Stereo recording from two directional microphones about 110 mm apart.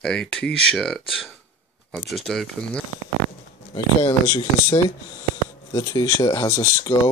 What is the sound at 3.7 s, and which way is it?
Speech, 45° left (ahead or behind).